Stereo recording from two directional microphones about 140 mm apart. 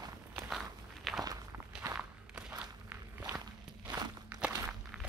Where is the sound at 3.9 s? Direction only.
30° right (ahead or behind).